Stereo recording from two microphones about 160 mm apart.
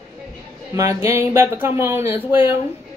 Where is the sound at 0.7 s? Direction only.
20° right (ahead or behind).